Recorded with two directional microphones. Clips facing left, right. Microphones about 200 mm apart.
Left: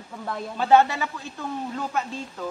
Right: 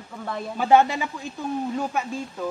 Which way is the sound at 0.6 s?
15° right (ahead or behind).